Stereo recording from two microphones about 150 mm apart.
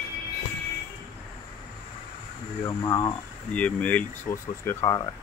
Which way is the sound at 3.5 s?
10° left (ahead or behind).